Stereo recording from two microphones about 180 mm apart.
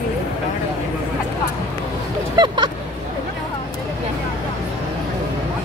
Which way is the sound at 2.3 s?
25° right (ahead or behind).